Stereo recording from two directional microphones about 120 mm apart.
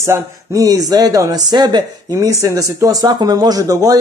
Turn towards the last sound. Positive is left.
turn(degrees=-30)  # may be behind; listen again after turning